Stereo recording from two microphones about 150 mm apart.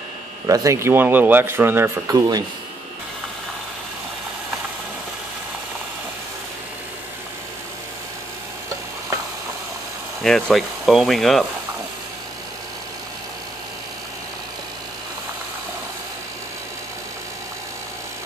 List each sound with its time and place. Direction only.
0.5 s speech: 20° right (ahead or behind)
10.2 s speech: centre (ahead or behind)